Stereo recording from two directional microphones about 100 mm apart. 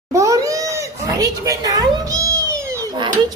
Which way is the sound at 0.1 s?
35° right (ahead or behind).